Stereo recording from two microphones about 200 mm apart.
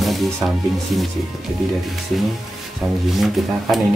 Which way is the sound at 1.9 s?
Centre (ahead or behind).